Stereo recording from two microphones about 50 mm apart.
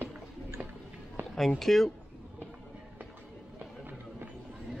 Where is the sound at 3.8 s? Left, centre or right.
Right.